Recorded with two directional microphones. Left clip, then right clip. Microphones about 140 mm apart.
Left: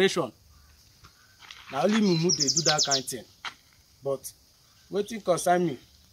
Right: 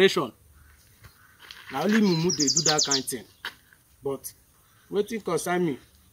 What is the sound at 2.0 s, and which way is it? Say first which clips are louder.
Speech: right 1 dB; 20° left (ahead or behind).